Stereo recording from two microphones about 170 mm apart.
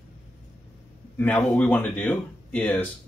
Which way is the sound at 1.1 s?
10° left (ahead or behind).